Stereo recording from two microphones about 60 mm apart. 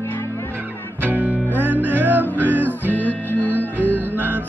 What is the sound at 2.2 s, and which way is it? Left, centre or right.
Music, left.